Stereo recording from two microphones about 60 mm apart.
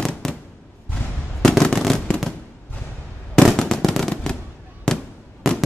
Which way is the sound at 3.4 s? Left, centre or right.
Centre.